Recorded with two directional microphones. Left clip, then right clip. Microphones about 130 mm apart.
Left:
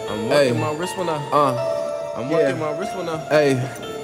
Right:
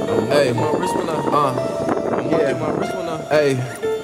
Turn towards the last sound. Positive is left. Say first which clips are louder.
# even
turn(degrees=0)  # may be behind; listen again after turning